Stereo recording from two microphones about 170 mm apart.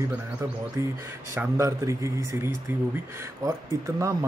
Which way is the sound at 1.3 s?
15° right (ahead or behind).